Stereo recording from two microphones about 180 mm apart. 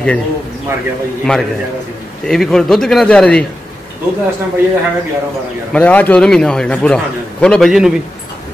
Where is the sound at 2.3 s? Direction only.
Centre (ahead or behind).